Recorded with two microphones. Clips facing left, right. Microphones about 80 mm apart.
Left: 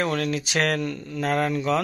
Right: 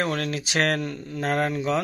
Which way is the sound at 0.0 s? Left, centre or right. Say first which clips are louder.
Left 2 dB; right.